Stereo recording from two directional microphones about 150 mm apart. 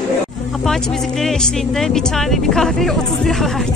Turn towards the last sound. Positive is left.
turn(degrees=0)  # may be behind; listen again after turning